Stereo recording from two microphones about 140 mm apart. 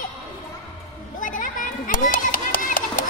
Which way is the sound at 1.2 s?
70° left (ahead or behind).